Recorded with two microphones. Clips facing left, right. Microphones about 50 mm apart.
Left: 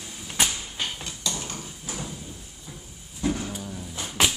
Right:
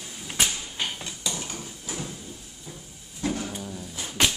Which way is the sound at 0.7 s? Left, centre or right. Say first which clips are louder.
Even; centre.